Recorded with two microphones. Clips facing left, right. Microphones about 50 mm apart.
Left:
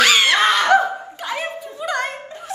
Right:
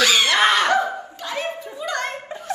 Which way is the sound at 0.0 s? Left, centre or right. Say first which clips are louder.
Left 3 dB; left.